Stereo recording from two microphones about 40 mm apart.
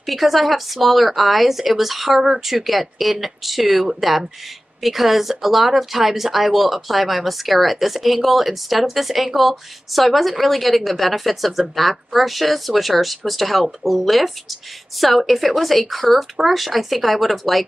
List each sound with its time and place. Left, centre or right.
0.0 s speech: centre